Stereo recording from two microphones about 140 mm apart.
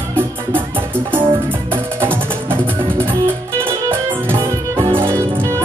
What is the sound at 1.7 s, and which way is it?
Music, 15° right (ahead or behind).